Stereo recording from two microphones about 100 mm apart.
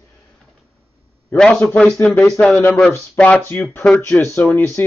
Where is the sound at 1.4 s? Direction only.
10° left (ahead or behind).